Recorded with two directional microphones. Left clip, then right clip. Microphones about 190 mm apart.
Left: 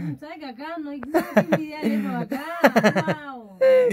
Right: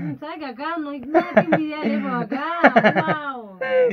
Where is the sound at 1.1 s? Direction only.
35° left (ahead or behind).